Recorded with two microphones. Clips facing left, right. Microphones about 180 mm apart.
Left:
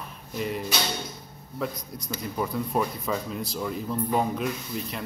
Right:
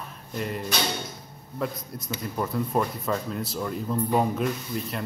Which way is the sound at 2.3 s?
Centre (ahead or behind).